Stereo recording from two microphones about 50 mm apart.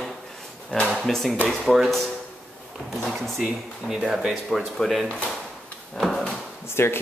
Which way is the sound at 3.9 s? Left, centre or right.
Centre.